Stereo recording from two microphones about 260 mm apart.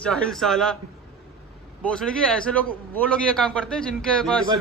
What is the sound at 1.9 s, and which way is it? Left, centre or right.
A man's voice, centre.